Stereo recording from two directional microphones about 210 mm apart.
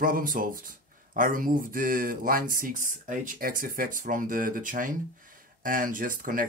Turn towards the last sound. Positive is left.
turn(degrees=-40)  # may be behind; listen again after turning